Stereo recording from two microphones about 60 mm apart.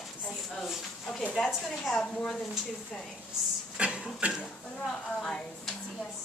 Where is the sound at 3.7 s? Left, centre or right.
Centre.